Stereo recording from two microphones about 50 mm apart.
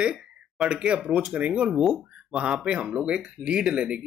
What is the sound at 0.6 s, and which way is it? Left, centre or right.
Speech, centre.